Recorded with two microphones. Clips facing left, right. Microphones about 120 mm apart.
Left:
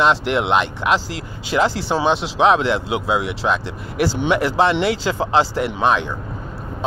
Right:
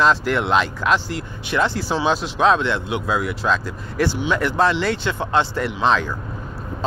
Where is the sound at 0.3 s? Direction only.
20° left (ahead or behind).